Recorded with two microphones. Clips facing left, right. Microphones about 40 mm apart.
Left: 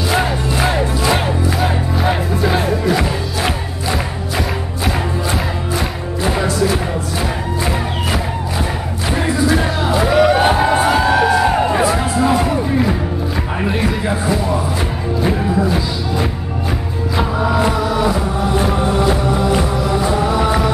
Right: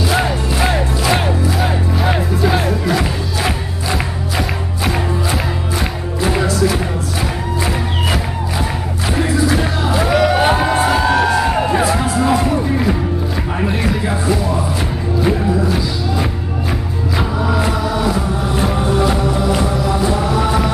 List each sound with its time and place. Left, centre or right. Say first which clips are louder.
0.1 s music: even; centre
9.1 s music: even; centre